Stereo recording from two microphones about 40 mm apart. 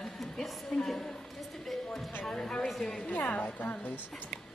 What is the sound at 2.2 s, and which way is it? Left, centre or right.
Speech, centre.